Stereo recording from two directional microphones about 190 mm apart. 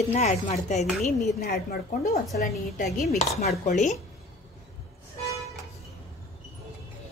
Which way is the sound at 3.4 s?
40° left (ahead or behind).